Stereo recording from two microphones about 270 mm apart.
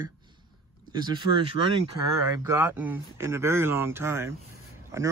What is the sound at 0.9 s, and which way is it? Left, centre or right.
Speech, centre.